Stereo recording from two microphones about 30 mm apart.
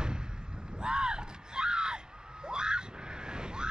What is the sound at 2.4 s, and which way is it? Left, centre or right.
Screaming, right.